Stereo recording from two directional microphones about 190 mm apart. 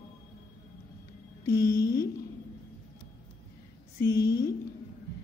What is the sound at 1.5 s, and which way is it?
Speech, 20° left (ahead or behind).